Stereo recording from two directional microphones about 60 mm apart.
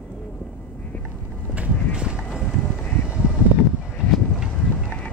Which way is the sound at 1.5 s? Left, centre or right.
Centre.